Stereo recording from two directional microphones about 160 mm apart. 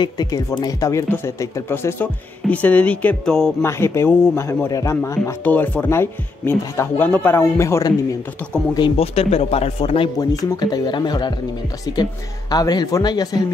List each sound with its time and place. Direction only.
0.0 s speech: 25° left (ahead or behind); by 3.5 s 5° left (ahead or behind)
3.6 s speech: 15° left (ahead or behind)
8.7 s speech: 35° left (ahead or behind)
10.1 s speech: 20° left (ahead or behind)